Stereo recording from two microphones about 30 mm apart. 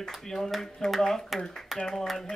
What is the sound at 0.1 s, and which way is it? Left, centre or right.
Speech, centre.